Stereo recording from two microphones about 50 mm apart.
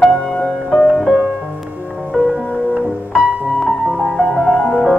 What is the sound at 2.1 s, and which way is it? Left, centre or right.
Music, centre.